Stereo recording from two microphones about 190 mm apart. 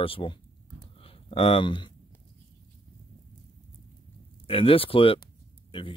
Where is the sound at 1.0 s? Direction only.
30° left (ahead or behind).